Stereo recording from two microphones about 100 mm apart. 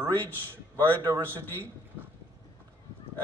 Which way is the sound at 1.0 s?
25° right (ahead or behind).